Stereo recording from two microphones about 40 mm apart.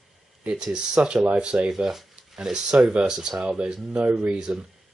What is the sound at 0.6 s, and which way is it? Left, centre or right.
Speech, right.